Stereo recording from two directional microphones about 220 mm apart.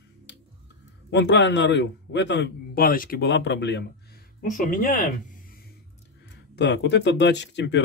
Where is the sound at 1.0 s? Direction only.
50° left (ahead or behind).